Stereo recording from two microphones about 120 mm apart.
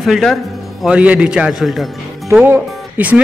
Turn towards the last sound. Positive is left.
turn(degrees=-15)  # may be behind; listen again after turning